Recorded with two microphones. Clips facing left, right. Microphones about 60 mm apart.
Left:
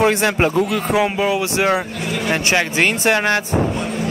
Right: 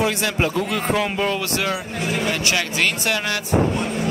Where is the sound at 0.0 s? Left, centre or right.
Left.